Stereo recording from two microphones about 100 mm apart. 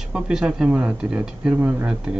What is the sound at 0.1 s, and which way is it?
Speech, 5° right (ahead or behind).